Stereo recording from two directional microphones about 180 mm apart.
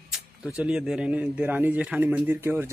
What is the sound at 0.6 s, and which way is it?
Speech, 5° right (ahead or behind).